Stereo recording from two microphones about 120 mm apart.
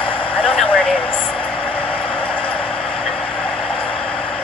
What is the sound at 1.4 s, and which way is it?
Vehicle, 50° left (ahead or behind).